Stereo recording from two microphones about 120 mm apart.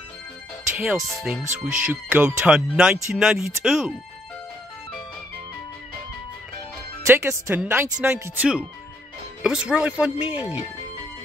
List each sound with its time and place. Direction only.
0.7 s speech: 5° right (ahead or behind)
7.1 s speech: 20° right (ahead or behind)